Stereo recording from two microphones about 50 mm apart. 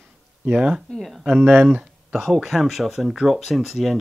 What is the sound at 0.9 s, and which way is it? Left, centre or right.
Speech, centre.